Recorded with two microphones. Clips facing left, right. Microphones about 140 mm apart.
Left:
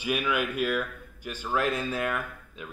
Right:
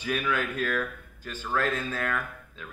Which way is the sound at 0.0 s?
15° left (ahead or behind).